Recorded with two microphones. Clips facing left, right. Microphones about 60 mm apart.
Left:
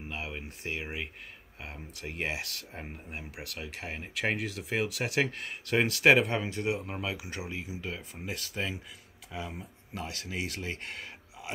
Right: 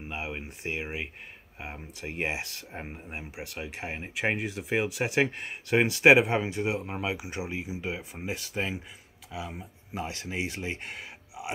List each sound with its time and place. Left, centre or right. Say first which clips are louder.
0.1 s speech: right 3 dB; right
9.3 s speech: right 1 dB; centre
9.9 s speech: right 3 dB; right; by 11.4 s centre